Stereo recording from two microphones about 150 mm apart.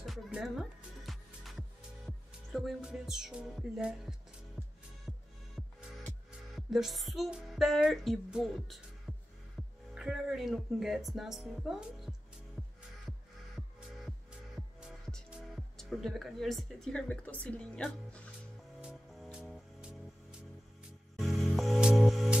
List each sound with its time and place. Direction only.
0.0 s music: centre (ahead or behind)
6.5 s speech: centre (ahead or behind)
9.1 s music: 10° left (ahead or behind)
9.9 s speech: 5° right (ahead or behind)
13.6 s music: centre (ahead or behind)
15.2 s speech: centre (ahead or behind)
18.8 s music: 5° right (ahead or behind)